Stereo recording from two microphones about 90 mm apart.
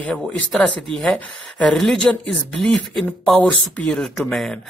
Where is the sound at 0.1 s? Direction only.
5° left (ahead or behind).